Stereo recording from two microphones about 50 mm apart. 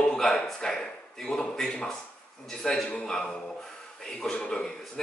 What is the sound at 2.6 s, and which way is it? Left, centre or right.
Speech, centre.